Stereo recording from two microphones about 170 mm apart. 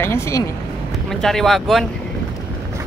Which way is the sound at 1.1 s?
Centre (ahead or behind).